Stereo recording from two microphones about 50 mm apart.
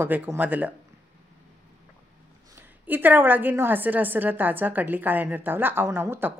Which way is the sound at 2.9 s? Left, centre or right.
Right.